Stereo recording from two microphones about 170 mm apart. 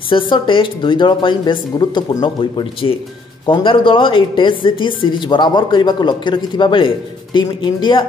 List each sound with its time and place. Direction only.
0.1 s a woman's voice: 30° left (ahead or behind)